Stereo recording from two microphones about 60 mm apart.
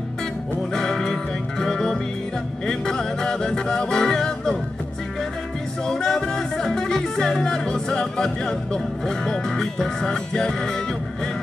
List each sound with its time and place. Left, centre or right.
0.7 s music: centre
5.9 s music: centre